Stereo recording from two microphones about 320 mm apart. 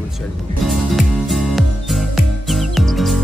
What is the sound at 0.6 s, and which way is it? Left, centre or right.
Music, centre.